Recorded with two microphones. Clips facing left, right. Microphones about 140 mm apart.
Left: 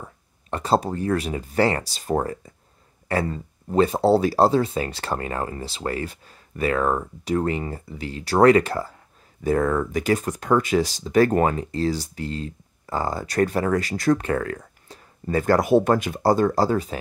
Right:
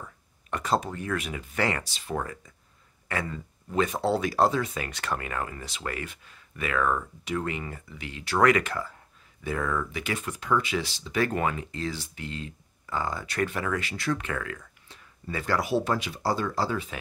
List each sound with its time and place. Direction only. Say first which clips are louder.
0.0 s speech: left 4 dB; 30° left (ahead or behind)